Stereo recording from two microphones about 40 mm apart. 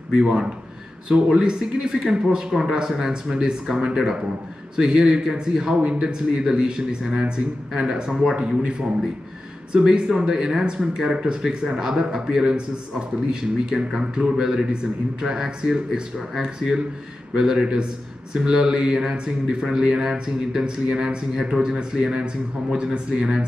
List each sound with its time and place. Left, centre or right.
0.1 s speech: centre
7.9 s speech: centre
9.7 s speech: right